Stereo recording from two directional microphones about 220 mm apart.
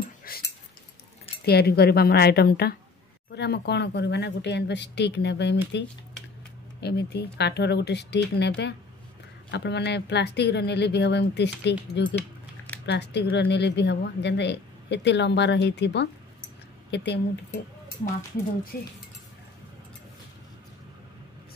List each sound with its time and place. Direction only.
0.3 s a sound: 40° left (ahead or behind)
1.4 s speech: 45° left (ahead or behind)
6.8 s speech: 50° left (ahead or behind)
18.7 s speech: 40° left (ahead or behind)